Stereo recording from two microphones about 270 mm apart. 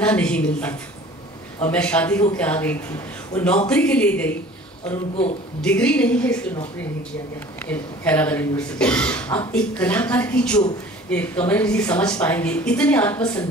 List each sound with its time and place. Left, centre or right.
0.0 s a woman's voice: centre
5.6 s a woman's voice: centre
7.5 s a woman's voice: centre